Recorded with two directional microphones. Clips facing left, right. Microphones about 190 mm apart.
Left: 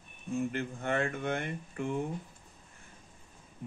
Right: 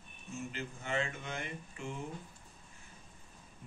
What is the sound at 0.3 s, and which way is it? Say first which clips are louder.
Speech: left 9 dB; 55° left (ahead or behind).